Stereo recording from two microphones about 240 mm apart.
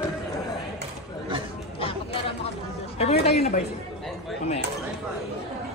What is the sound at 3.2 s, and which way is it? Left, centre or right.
Speech, left.